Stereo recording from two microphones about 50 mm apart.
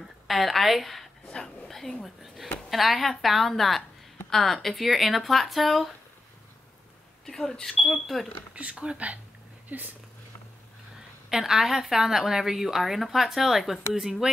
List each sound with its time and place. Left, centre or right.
0.3 s a woman's voice: centre
7.2 s speech: centre
7.8 s a woman's voice: centre
8.5 s speech: right
11.2 s a woman's voice: centre